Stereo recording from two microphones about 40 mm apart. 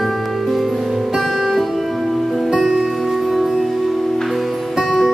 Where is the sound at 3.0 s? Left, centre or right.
Centre.